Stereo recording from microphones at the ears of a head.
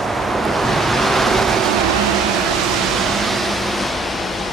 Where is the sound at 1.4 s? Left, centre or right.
Right.